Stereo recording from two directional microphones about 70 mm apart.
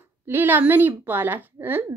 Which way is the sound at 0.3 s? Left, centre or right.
Right.